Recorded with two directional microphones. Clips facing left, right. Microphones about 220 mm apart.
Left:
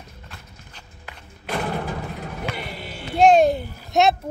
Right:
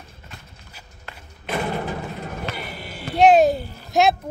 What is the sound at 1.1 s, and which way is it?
Thump, centre (ahead or behind).